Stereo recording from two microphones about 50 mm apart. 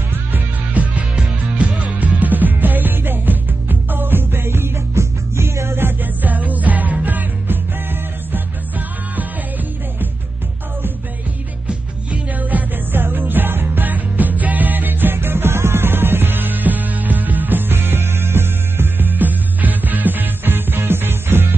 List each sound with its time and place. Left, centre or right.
0.8 s music: right
4.9 s music: right
11.6 s music: right